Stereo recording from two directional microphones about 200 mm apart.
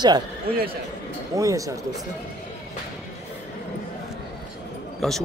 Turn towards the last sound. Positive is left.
turn(degrees=0)  # may be behind; listen again after turning